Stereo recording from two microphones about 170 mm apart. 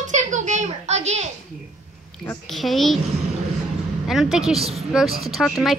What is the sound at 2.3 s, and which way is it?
Speech, centre (ahead or behind).